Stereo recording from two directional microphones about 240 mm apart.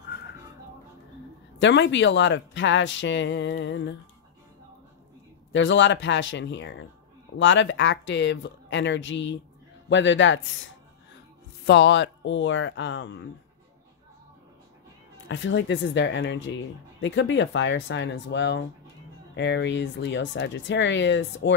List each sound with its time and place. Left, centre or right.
1.6 s speech: left
5.5 s speech: left
15.2 s speech: left